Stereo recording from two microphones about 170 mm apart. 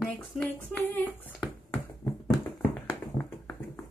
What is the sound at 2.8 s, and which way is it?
Tap, 10° left (ahead or behind).